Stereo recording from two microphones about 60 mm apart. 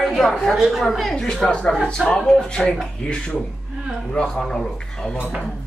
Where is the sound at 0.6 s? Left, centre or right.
Centre.